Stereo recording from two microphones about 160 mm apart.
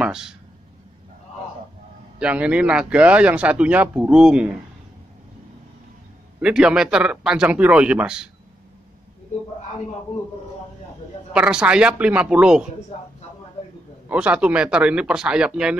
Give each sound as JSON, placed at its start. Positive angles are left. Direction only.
{"t": 0.0, "sound": "speech", "side_deg": -5}
{"t": 2.1, "sound": "speech", "side_deg": -5}
{"t": 6.4, "sound": "speech", "side_deg": -5}
{"t": 11.3, "sound": "speech", "side_deg": -5}
{"t": 14.0, "sound": "speech", "side_deg": -10}